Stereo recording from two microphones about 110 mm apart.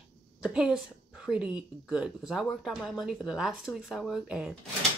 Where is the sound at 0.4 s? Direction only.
10° right (ahead or behind).